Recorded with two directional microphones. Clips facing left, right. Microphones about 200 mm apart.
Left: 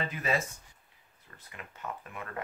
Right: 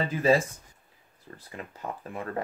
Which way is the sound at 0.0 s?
30° right (ahead or behind).